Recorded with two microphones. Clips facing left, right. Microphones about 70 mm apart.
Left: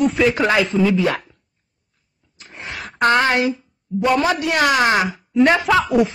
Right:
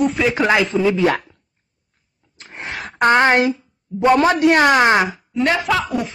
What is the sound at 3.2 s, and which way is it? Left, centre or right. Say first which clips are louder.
A man's voice: right 3 dB; right.